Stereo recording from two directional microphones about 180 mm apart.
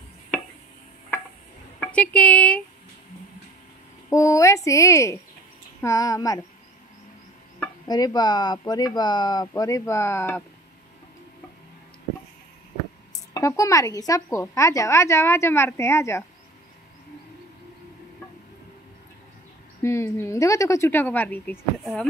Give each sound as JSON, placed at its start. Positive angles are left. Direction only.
{"t": 1.8, "sound": "speech", "side_deg": 5}
{"t": 4.1, "sound": "speech", "side_deg": 15}
{"t": 7.8, "sound": "speech", "side_deg": 20}
{"t": 13.1, "sound": "speech", "side_deg": 20}
{"t": 19.8, "sound": "speech", "side_deg": 15}